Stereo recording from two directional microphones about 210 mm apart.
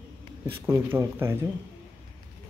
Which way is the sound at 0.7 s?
10° right (ahead or behind).